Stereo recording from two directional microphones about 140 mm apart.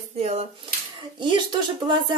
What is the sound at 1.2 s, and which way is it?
Speech, 35° right (ahead or behind).